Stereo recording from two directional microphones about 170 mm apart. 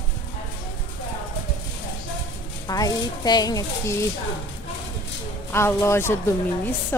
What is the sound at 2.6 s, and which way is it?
Speech, 20° left (ahead or behind).